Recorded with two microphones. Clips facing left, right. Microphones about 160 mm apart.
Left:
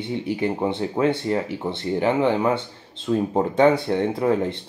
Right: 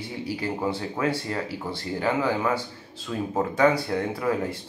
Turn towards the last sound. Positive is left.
turn(degrees=25)  # may be behind; listen again after turning